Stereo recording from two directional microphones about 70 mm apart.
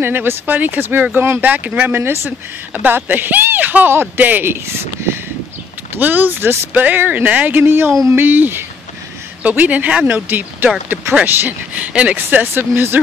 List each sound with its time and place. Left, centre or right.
0.0 s speech: right
2.0 s speech: right
11.9 s speech: centre
12.2 s speech: right